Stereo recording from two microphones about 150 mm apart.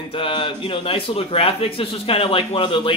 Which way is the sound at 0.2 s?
35° left (ahead or behind).